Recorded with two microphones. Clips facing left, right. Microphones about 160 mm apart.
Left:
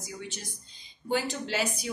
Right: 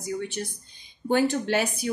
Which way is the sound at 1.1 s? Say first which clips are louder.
Right 7 dB; 55° right (ahead or behind).